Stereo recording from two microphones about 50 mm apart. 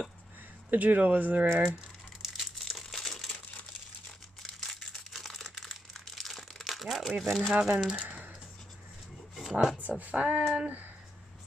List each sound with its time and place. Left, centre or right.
0.7 s speech: right
2.3 s crumpling: centre
4.6 s crumpling: centre
7.5 s speech: centre
9.3 s a sound: centre
9.8 s speech: right
10.4 s a sound: centre